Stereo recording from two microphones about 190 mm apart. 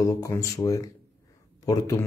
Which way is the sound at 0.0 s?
15° left (ahead or behind).